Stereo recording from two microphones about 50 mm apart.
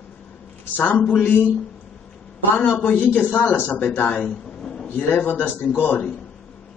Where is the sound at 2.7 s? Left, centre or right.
Left.